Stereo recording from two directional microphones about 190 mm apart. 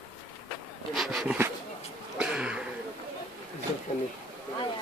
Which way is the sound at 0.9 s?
Centre (ahead or behind).